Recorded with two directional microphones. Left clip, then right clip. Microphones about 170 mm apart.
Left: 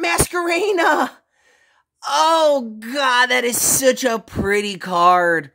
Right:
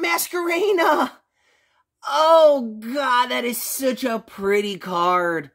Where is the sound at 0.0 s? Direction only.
20° left (ahead or behind).